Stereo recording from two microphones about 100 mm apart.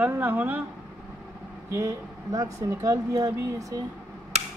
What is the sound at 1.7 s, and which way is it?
Speech, 30° right (ahead or behind).